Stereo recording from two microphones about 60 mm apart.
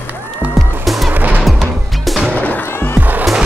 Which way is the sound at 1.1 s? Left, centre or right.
Right.